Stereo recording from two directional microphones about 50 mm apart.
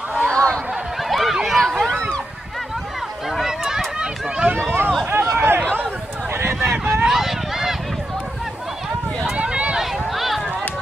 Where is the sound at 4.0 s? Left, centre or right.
Centre.